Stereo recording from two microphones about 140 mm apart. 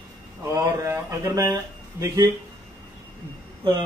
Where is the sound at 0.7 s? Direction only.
20° right (ahead or behind).